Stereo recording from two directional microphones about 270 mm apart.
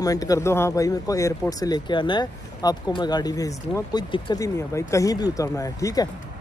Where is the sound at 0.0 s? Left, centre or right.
Centre.